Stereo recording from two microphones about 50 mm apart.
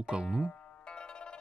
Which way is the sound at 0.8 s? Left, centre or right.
Centre.